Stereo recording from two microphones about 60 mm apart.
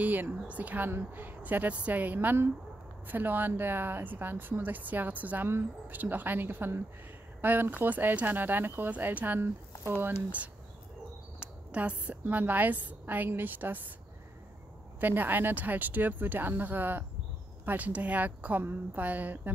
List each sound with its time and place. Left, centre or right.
0.0 s a woman's voice: right
2.1 s speech: right
11.3 s a woman's voice: right
15.0 s a woman's voice: right